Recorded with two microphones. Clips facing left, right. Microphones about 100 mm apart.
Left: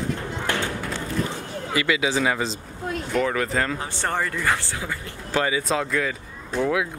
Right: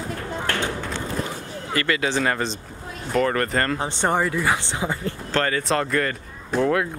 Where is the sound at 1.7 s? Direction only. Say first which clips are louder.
Even; 5° left (ahead or behind).